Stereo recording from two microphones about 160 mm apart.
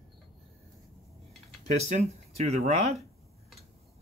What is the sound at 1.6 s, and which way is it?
Speech, 45° right (ahead or behind).